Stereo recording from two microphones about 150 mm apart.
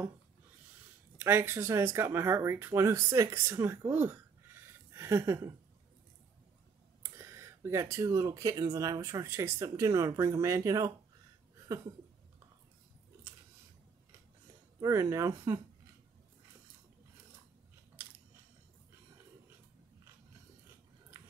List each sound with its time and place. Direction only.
1.1 s speech: 15° right (ahead or behind)
7.2 s speech: 20° right (ahead or behind)
14.8 s speech: 20° right (ahead or behind)